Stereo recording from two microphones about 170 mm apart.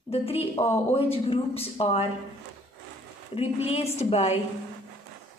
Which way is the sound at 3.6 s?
40° left (ahead or behind).